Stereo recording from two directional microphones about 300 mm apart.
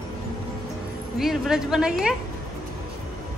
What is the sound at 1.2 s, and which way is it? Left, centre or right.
Speech, centre.